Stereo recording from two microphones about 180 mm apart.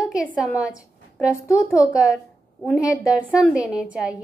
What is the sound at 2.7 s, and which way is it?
A woman's voice, 5° right (ahead or behind).